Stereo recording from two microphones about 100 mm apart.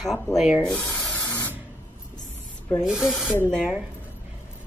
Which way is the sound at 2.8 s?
5° right (ahead or behind).